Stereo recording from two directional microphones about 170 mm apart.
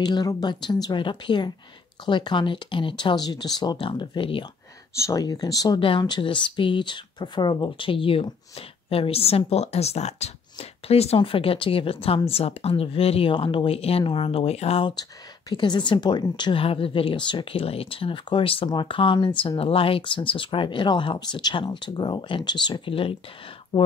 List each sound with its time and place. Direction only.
0.0 s a woman's voice: 25° left (ahead or behind)
4.9 s a woman's voice: 20° left (ahead or behind)